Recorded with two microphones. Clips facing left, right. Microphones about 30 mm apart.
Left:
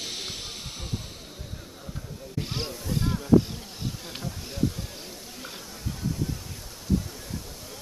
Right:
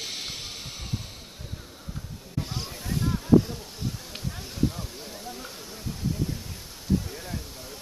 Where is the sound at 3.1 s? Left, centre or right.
Centre.